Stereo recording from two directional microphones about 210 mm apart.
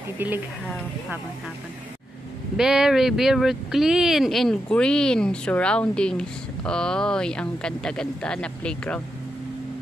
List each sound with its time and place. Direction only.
0.2 s speech: 10° right (ahead or behind)
2.5 s speech: 5° right (ahead or behind)